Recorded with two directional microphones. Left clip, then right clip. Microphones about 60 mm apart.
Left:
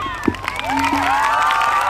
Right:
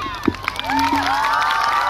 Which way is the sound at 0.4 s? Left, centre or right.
Right.